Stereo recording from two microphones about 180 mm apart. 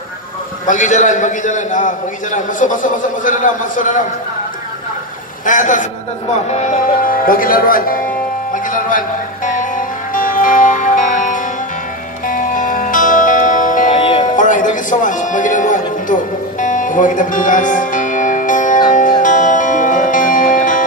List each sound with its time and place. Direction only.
0.7 s a man's voice: 45° left (ahead or behind)
5.4 s a man's voice: 45° left (ahead or behind)
8.6 s music: 45° left (ahead or behind)
13.9 s music: 30° left (ahead or behind)
14.3 s music: 45° left (ahead or behind)